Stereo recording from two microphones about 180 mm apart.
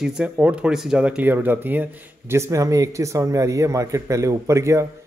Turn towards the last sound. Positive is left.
turn(degrees=-15)  # may be behind; listen again after turning